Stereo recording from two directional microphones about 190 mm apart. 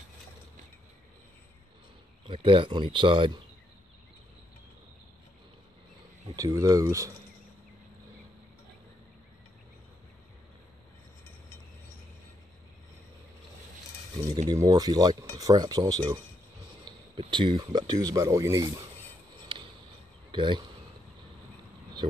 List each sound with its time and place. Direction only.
2.2 s speech: 25° right (ahead or behind)
6.3 s speech: 15° right (ahead or behind)
14.1 s speech: 20° right (ahead or behind)
20.2 s speech: 25° right (ahead or behind)